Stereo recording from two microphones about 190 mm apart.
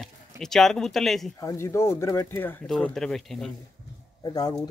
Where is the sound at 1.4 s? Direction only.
15° left (ahead or behind).